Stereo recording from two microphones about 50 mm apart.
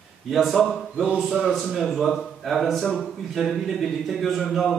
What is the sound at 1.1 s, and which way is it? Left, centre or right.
A man's voice, centre.